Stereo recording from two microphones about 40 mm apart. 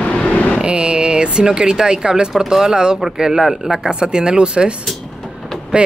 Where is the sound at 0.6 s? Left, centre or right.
Right.